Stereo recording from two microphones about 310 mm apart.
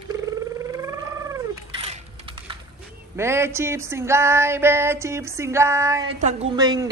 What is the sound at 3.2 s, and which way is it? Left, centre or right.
Speech, centre.